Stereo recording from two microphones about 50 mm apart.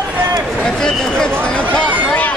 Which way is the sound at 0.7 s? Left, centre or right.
Centre.